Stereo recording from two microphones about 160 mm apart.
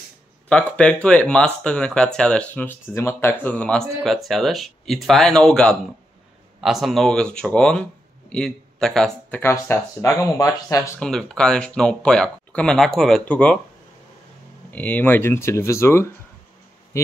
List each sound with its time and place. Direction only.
0.5 s speech: 5° left (ahead or behind)
9.4 s speech: 15° left (ahead or behind)
11.0 s speech: 5° left (ahead or behind)
14.7 s speech: 10° left (ahead or behind)